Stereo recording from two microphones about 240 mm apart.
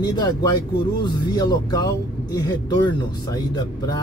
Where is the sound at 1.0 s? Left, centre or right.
Centre.